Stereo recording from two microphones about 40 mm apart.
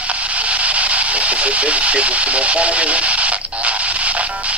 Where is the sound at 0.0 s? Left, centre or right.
Right.